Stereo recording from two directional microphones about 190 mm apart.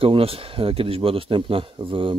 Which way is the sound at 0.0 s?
30° right (ahead or behind).